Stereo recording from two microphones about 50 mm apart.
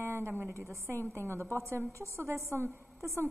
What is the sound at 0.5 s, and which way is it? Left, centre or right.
Speech, right.